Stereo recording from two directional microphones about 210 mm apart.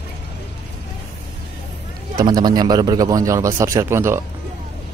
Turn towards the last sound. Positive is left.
turn(degrees=-10)  # may be behind; listen again after turning